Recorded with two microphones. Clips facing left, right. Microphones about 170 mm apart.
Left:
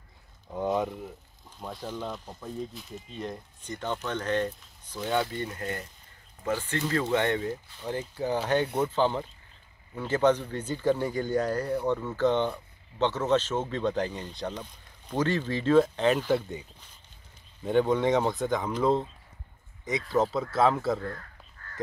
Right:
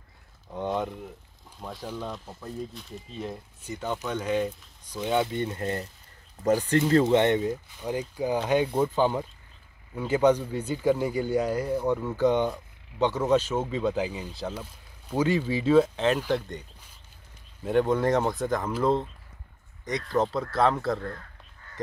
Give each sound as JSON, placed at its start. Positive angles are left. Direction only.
{"t": 0.5, "sound": "speech", "side_deg": 0}
{"t": 6.4, "sound": "speech", "side_deg": -40}
{"t": 6.9, "sound": "speech", "side_deg": -25}
{"t": 17.6, "sound": "speech", "side_deg": 0}
{"t": 21.6, "sound": "crow", "side_deg": -10}